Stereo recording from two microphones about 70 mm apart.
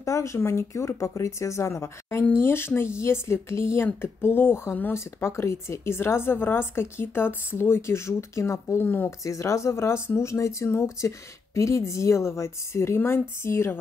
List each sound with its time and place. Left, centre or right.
0.0 s a woman's voice: left
4.9 s a woman's voice: left
9.2 s a woman's voice: left